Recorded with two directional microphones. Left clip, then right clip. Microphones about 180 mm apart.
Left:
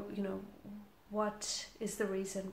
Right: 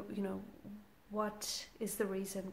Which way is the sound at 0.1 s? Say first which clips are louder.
Even; 35° right (ahead or behind).